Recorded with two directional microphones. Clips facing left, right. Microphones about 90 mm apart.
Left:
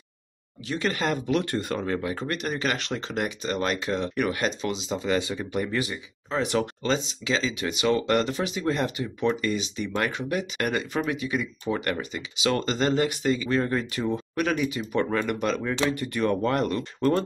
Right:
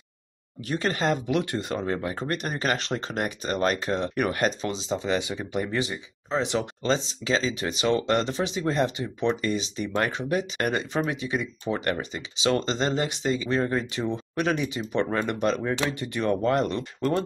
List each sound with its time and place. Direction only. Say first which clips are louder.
0.7 s speech: right 1 dB; 35° right (ahead or behind)
1.2 s speech: left 1 dB; 15° right (ahead or behind)
1.9 s speech: even; 30° right (ahead or behind)
6.9 s speech: right 4 dB; 35° right (ahead or behind)
15.9 s speech: left 1 dB; 20° right (ahead or behind)